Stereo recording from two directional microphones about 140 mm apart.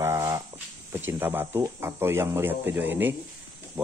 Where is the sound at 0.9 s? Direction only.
15° right (ahead or behind).